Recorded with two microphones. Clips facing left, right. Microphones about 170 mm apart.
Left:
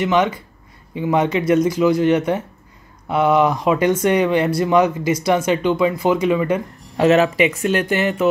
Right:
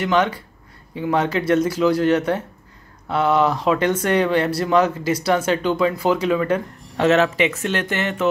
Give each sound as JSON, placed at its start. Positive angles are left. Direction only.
{"t": 0.0, "sound": "speech", "side_deg": 10}